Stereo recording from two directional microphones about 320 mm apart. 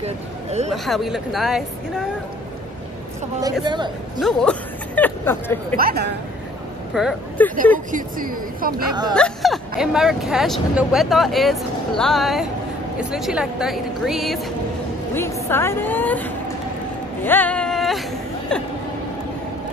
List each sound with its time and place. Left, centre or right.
0.0 s speech: right
0.7 s speech: centre
3.6 s speech: centre
4.2 s speech: centre
5.8 s a woman's voice: right
6.9 s speech: centre
7.9 s a woman's voice: right
9.1 s a woman's voice: centre
17.2 s a sound: centre
18.5 s speech: centre